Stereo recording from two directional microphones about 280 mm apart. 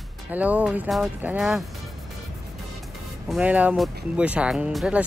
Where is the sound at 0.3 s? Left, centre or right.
Centre.